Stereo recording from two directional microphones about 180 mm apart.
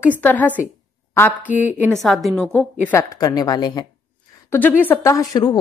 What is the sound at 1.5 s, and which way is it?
A woman's voice, 10° right (ahead or behind).